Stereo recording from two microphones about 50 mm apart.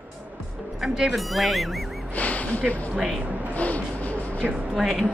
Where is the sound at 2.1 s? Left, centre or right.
Left.